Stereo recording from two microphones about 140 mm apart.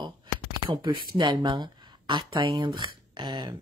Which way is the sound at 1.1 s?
35° right (ahead or behind).